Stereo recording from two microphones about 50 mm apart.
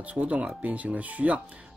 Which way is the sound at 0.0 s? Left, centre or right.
Right.